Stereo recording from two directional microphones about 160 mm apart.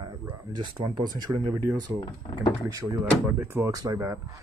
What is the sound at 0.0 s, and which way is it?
Speech, 30° right (ahead or behind).